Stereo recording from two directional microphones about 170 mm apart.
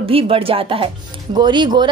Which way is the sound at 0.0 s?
35° right (ahead or behind).